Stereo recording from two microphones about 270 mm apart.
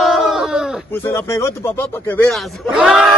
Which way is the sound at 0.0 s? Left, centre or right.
Centre.